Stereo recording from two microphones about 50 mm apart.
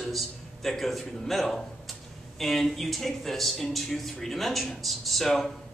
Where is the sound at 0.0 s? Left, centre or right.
Centre.